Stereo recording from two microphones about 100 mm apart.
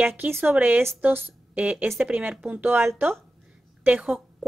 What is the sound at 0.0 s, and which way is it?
Speech, 20° right (ahead or behind).